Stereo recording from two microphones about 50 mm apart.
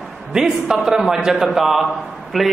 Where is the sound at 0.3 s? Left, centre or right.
Centre.